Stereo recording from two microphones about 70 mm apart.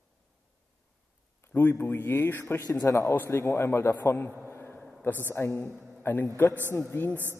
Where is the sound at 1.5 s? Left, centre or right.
Left.